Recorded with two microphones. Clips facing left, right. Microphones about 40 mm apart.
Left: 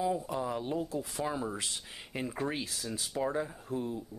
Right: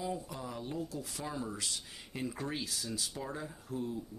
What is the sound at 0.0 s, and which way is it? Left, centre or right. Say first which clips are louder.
Speech: left 7 dB; left.